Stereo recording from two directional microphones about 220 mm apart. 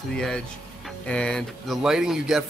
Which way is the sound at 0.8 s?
5° left (ahead or behind).